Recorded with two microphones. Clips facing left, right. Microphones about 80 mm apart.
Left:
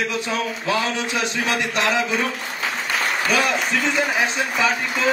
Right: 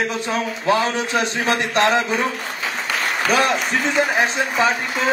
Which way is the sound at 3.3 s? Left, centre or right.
Right.